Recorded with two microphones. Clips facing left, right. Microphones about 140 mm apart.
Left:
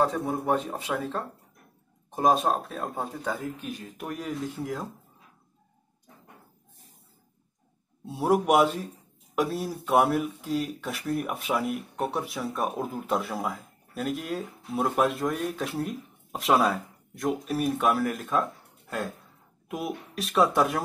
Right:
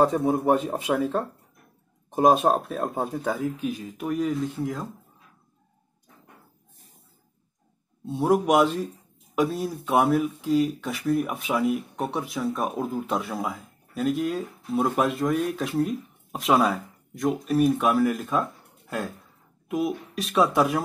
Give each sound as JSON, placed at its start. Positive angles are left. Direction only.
{"t": 0.1, "sound": "a man's voice", "side_deg": -10}
{"t": 0.9, "sound": "speech", "side_deg": -5}
{"t": 8.1, "sound": "speech", "side_deg": 5}
{"t": 19.7, "sound": "speech", "side_deg": 0}